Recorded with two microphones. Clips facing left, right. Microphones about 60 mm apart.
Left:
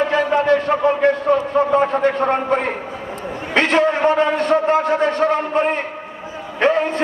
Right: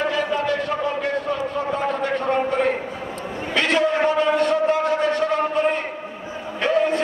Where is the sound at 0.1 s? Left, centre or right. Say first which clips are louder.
Left 6 dB; left.